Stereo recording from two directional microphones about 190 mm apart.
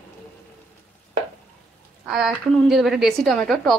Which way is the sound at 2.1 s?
Centre (ahead or behind).